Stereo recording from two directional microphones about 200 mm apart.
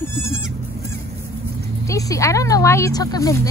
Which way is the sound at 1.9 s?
15° left (ahead or behind).